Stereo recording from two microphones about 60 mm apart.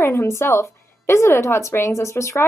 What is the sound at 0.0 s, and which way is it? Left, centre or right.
A woman's voice, left.